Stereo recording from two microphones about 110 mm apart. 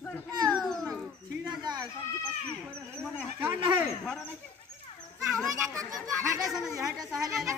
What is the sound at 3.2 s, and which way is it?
Speech, 15° right (ahead or behind).